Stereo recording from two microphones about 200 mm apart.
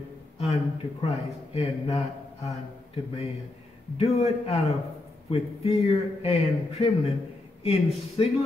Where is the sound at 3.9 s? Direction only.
30° left (ahead or behind).